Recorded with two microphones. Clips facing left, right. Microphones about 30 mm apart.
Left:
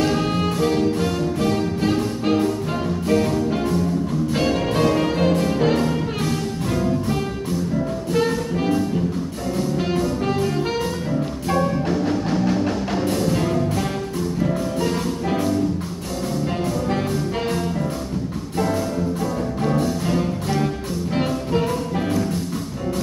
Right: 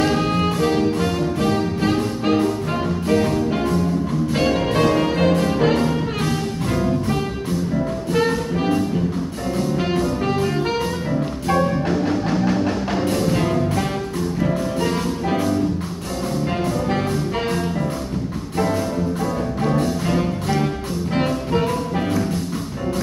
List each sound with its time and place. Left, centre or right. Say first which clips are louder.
0.0 s music: right 2 dB; centre
8.1 s jazz: right 1 dB; centre
9.8 s music: right 1 dB; centre
19.6 s music: right 1 dB; centre